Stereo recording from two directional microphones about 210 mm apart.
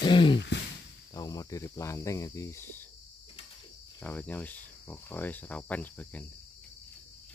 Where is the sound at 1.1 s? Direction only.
15° left (ahead or behind).